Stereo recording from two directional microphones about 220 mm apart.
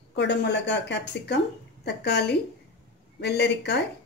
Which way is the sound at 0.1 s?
50° left (ahead or behind).